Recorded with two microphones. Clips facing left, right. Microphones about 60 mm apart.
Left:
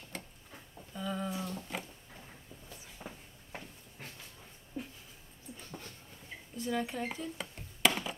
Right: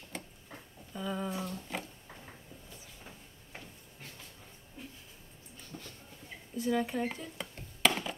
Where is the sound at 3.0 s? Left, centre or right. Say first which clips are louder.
Left 7 dB; left.